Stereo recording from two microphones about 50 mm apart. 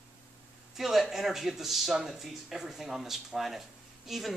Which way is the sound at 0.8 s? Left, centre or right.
Centre.